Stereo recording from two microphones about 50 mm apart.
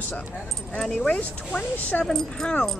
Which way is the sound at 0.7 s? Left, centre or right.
Centre.